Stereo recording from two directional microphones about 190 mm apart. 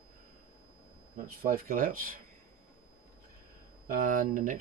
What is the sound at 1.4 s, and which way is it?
Speech, 50° right (ahead or behind).